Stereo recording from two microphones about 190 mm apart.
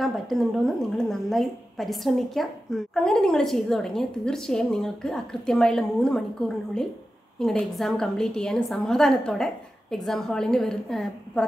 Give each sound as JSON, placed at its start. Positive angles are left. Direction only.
{"t": 0.0, "sound": "a woman's voice", "side_deg": 0}